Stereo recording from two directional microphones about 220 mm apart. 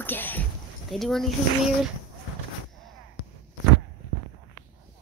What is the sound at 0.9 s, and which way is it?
Speech, centre (ahead or behind).